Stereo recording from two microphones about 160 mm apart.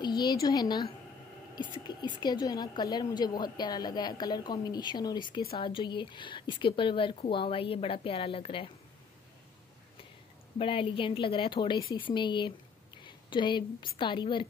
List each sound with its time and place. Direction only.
0.0 s a woman's voice: 25° left (ahead or behind)
10.6 s a woman's voice: 35° left (ahead or behind)